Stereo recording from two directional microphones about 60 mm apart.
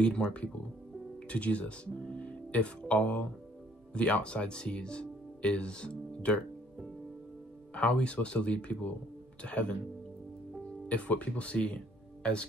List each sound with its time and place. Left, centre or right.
0.0 s speech: centre
7.7 s speech: left
10.9 s speech: left